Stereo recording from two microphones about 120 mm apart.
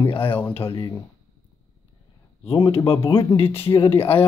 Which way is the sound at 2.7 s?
50° left (ahead or behind).